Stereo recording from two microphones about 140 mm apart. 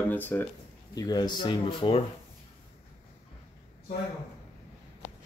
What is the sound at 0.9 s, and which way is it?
Speech, 30° left (ahead or behind).